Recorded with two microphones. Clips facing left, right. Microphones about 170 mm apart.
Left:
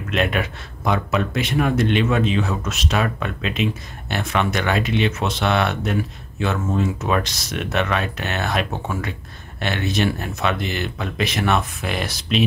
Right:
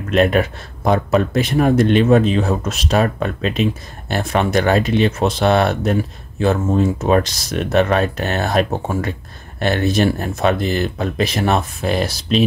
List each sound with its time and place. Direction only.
0.1 s speech: 40° right (ahead or behind)